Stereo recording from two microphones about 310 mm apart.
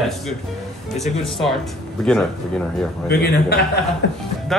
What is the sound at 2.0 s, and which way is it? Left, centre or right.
Speech, centre.